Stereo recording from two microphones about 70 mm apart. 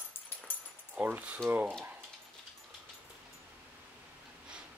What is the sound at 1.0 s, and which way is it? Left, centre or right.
Speech, right.